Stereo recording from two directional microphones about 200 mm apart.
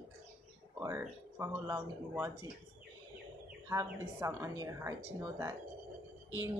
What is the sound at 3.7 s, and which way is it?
Speech, 15° right (ahead or behind).